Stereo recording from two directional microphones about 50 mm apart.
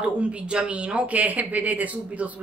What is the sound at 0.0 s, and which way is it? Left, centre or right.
Speech, right.